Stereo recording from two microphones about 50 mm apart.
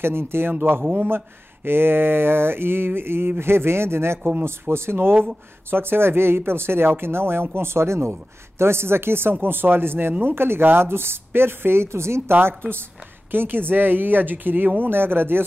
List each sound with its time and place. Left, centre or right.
0.0 s speech: right
12.3 s speech: right